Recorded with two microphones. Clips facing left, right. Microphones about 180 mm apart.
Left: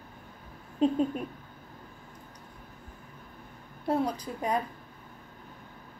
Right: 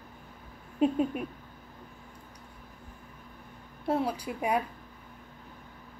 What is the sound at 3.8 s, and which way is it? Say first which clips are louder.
Speech: left 1 dB; 5° right (ahead or behind).